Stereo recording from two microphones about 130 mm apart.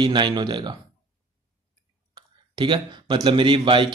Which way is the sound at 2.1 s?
35° right (ahead or behind).